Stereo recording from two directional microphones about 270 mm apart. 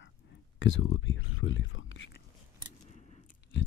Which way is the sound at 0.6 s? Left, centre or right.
Left.